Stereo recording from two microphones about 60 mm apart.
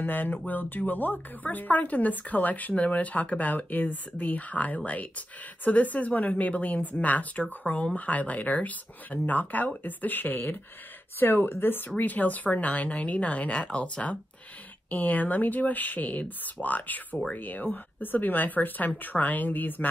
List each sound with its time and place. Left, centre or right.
0.0 s a woman's voice: left